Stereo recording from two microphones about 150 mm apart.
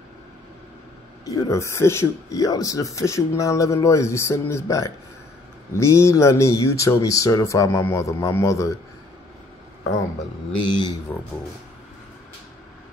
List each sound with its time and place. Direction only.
1.2 s speech: 20° left (ahead or behind)
10.6 s speech: 30° left (ahead or behind)